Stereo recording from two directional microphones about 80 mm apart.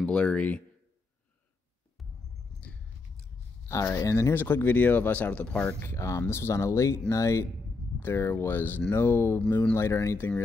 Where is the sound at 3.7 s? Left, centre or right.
Left.